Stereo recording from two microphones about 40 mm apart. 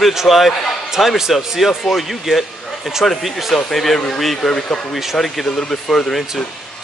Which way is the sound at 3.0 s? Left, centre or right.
Centre.